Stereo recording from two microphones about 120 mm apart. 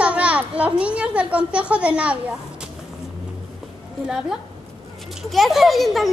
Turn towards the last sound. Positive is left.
turn(degrees=0)  # may be behind; listen again after turning